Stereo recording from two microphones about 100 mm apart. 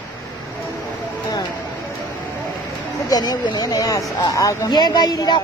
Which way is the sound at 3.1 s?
40° left (ahead or behind).